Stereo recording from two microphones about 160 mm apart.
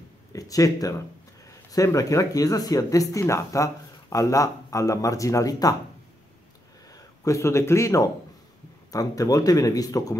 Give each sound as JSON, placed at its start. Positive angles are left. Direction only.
{"t": 0.3, "sound": "speech", "side_deg": 20}
{"t": 6.9, "sound": "speech", "side_deg": 20}